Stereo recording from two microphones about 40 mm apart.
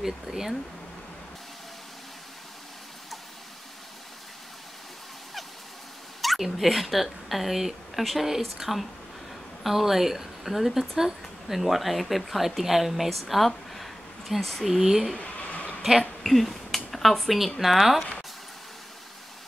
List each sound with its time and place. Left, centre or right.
0.0 s speech: centre
6.2 s speech: centre
14.8 s speech: centre
15.1 s a sound: left
16.2 s speech: centre